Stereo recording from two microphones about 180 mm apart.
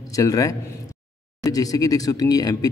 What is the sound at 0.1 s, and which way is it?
Speech, 20° left (ahead or behind).